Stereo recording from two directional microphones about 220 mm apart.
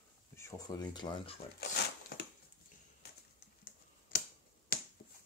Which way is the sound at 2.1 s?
45° left (ahead or behind).